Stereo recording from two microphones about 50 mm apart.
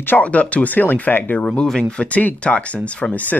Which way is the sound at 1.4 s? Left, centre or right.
Centre.